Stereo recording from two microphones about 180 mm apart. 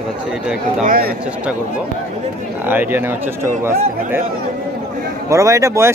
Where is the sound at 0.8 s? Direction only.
55° right (ahead or behind).